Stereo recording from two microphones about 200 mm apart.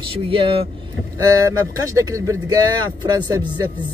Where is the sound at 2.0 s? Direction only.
15° right (ahead or behind).